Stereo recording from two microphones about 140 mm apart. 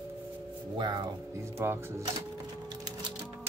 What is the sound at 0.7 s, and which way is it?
Speech, 30° right (ahead or behind).